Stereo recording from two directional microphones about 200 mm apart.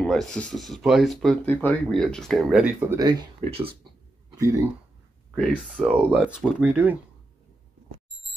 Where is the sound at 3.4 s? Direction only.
30° right (ahead or behind).